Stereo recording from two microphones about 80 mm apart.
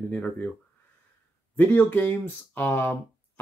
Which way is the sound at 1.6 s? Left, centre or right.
Left.